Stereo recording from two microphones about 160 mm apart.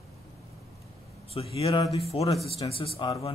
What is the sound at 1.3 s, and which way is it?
Speech, 35° left (ahead or behind).